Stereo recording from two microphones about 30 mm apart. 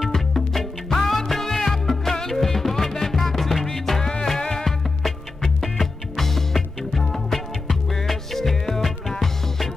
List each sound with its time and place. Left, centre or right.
0.1 s music: centre
4.2 s music: centre
5.0 s music: centre